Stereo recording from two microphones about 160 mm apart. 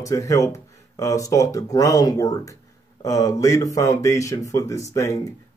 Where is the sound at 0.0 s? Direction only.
20° left (ahead or behind).